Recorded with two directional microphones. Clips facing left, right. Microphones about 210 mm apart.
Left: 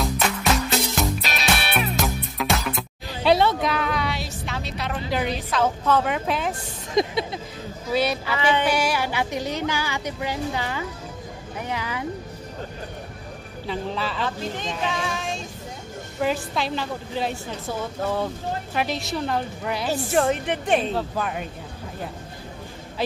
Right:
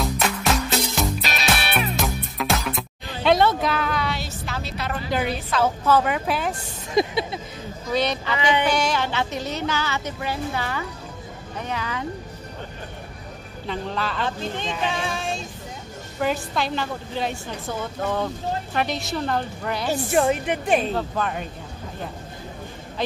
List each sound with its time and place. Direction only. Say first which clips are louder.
0.0 s music: even; centre (ahead or behind)
7.0 s a woman's voice: right 1 dB; 5° right (ahead or behind)
7.8 s speech: even; 5° left (ahead or behind)
13.7 s a woman's voice: even; 5° left (ahead or behind)
15.0 s female singing: even; 30° right (ahead or behind)
16.2 s a woman's voice: even; centre (ahead or behind)
19.9 s speech: right 1 dB; 10° right (ahead or behind)
21.2 s speech: right 1 dB; 5° left (ahead or behind)